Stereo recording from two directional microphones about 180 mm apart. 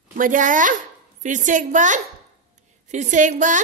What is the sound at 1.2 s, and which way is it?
Child singing, 45° right (ahead or behind).